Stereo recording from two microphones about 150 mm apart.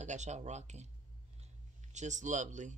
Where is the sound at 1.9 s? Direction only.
55° right (ahead or behind).